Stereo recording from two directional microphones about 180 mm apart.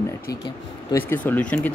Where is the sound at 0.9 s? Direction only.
15° left (ahead or behind).